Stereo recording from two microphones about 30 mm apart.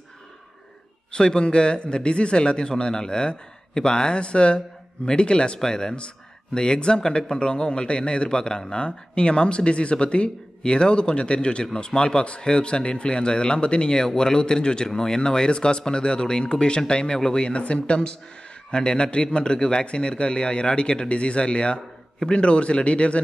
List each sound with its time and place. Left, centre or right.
1.1 s a man's voice: left
5.6 s speech: left
5.9 s a man's voice: left